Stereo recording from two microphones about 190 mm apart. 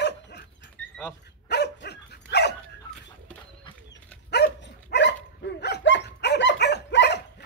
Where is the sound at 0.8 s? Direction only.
60° right (ahead or behind).